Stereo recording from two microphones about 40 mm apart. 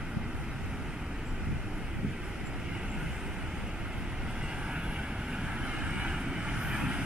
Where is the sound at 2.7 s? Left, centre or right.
Right.